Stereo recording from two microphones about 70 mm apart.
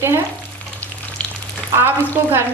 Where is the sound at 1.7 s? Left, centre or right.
Right.